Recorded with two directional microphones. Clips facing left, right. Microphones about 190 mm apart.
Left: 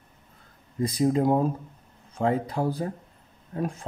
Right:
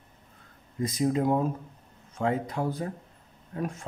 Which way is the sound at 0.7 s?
35° left (ahead or behind).